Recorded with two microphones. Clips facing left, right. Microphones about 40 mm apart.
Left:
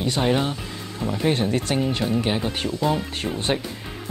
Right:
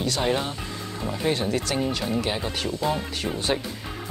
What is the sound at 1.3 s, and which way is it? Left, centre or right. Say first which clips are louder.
Speech: left 3 dB; left.